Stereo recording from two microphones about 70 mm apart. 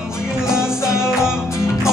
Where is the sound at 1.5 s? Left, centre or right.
Left.